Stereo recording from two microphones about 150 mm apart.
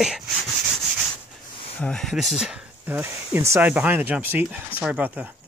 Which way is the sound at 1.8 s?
5° left (ahead or behind).